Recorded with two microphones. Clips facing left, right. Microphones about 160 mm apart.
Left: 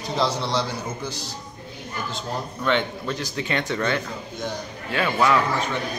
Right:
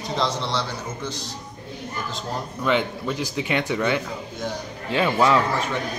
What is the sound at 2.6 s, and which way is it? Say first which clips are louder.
Speech: right 1 dB; 5° right (ahead or behind).